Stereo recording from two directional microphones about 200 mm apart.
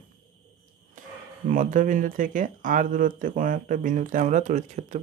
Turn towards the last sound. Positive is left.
turn(degrees=-35)  # may be behind; listen again after turning